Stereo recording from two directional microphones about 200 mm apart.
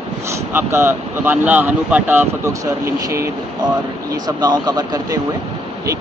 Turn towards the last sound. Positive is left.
turn(degrees=-20)  # may be behind; listen again after turning